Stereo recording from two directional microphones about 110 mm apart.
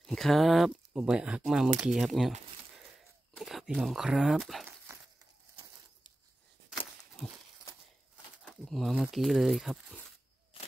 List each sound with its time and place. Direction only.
0.0 s speech: 5° left (ahead or behind)
3.3 s speech: centre (ahead or behind)
4.9 s a sound: 25° right (ahead or behind)
8.5 s speech: centre (ahead or behind)